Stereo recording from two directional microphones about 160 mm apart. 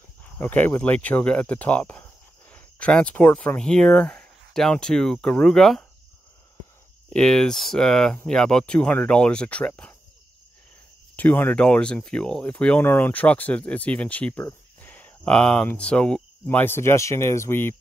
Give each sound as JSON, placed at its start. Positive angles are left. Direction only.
{"t": 0.2, "sound": "speech", "side_deg": 10}
{"t": 7.1, "sound": "speech", "side_deg": 5}
{"t": 11.1, "sound": "speech", "side_deg": 10}